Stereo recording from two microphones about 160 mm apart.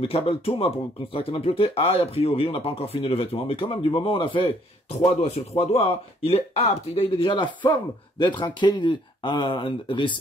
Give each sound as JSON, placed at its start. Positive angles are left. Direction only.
{"t": 0.0, "sound": "speech", "side_deg": 35}